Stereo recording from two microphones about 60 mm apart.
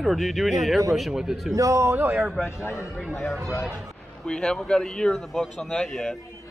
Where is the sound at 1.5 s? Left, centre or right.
Right.